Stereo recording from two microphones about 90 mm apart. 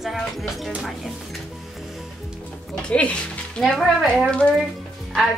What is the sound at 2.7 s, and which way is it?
Music, 10° left (ahead or behind).